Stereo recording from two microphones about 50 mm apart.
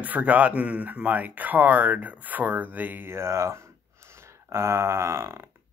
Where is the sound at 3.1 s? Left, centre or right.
Right.